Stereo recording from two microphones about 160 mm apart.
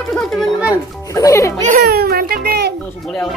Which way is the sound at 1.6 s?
65° right (ahead or behind).